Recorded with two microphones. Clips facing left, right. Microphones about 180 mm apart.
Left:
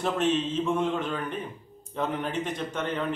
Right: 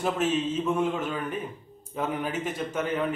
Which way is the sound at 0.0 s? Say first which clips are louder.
Even; 5° right (ahead or behind).